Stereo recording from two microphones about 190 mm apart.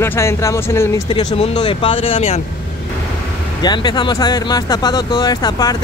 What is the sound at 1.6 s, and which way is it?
Speech, 25° left (ahead or behind).